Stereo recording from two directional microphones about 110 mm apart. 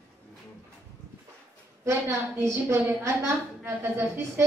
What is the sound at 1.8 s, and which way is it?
A woman's voice, 25° right (ahead or behind).